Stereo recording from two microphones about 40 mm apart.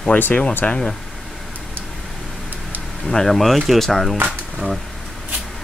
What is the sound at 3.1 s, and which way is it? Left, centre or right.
Speech, centre.